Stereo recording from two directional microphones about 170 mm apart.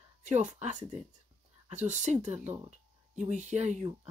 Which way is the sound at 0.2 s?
45° right (ahead or behind).